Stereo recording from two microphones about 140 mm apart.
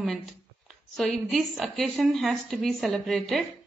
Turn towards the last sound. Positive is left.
turn(degrees=0)  # may be behind; listen again after turning